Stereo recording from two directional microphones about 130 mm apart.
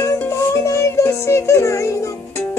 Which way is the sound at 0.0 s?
20° left (ahead or behind).